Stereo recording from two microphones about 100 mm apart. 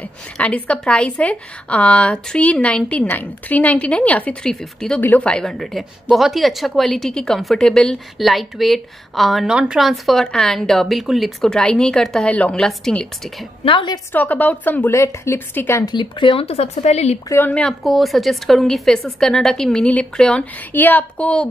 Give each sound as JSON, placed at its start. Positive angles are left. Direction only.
{"t": 0.4, "sound": "a woman's voice", "side_deg": 15}
{"t": 5.0, "sound": "a woman's voice", "side_deg": 20}
{"t": 5.3, "sound": "a woman's voice", "side_deg": 5}
{"t": 13.7, "sound": "a woman's voice", "side_deg": 55}
{"t": 14.1, "sound": "a woman's voice", "side_deg": 15}
{"t": 15.9, "sound": "speech", "side_deg": 50}
{"t": 17.5, "sound": "a woman's voice", "side_deg": 10}
{"t": 17.8, "sound": "a woman's voice", "side_deg": 0}